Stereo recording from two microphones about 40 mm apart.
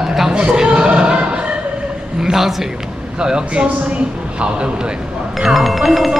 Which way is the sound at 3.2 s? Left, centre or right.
Right.